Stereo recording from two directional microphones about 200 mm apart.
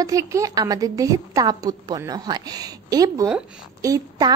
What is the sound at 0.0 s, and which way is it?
A woman's voice, 15° right (ahead or behind).